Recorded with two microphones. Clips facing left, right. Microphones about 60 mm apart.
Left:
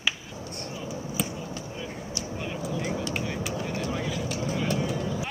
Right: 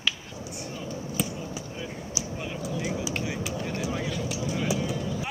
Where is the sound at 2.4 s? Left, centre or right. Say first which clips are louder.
Left 1 dB; centre.